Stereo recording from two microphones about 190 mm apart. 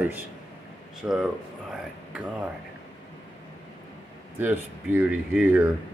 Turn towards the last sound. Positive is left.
turn(degrees=-10)  # may be behind; listen again after turning